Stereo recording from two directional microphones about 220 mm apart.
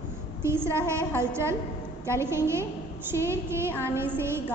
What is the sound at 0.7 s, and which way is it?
A woman's voice, 10° right (ahead or behind).